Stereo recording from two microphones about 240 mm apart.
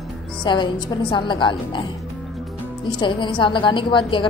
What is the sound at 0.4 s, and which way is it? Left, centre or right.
A woman's voice, centre.